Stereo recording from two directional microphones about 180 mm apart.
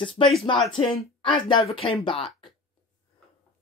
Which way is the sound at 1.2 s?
25° left (ahead or behind).